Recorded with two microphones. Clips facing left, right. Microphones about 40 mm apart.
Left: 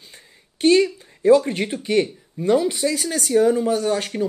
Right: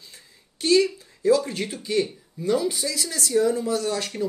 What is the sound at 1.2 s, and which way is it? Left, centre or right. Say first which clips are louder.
Speech: left 5 dB; left.